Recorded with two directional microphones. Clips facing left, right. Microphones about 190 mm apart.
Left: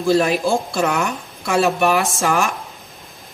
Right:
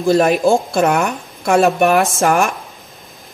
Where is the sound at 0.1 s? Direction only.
50° right (ahead or behind).